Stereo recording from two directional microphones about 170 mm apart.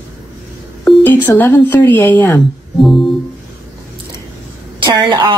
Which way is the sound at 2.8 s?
Centre (ahead or behind).